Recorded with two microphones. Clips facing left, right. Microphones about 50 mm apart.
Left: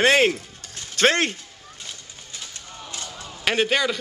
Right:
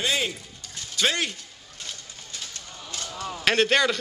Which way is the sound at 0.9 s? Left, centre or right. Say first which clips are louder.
Left 6 dB; left.